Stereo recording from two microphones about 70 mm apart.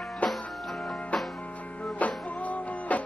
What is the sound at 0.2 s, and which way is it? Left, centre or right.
Music, centre.